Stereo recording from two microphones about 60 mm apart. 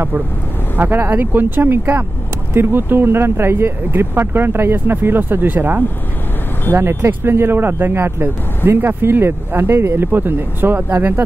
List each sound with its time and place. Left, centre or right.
0.9 s speech: right
6.7 s speech: right